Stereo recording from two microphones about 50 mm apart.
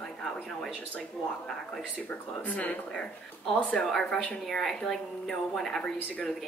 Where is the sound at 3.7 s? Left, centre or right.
Centre.